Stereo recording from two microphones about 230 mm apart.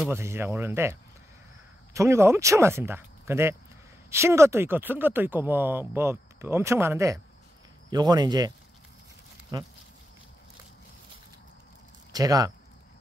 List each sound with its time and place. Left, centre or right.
0.0 s speech: centre
2.0 s speech: centre
12.1 s speech: centre